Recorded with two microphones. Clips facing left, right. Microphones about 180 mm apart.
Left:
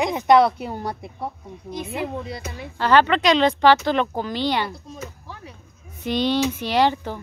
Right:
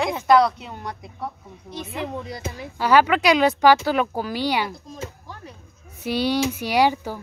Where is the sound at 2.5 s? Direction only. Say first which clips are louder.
Even; 5° right (ahead or behind).